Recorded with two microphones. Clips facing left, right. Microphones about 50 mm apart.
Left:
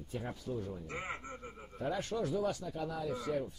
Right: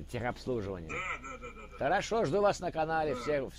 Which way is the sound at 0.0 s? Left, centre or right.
Right.